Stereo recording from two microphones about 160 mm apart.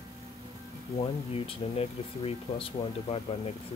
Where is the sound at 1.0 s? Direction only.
35° left (ahead or behind).